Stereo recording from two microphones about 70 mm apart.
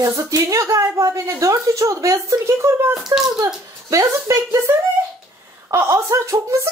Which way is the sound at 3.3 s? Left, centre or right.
Right.